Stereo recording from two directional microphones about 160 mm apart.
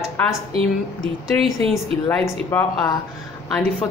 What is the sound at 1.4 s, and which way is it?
Speech, 35° right (ahead or behind).